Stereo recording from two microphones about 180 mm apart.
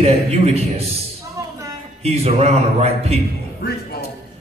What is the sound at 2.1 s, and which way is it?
A man's voice, 35° right (ahead or behind).